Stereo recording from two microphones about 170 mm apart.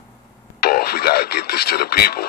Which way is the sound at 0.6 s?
65° left (ahead or behind).